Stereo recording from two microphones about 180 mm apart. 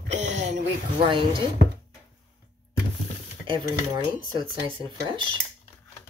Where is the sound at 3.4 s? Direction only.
30° right (ahead or behind).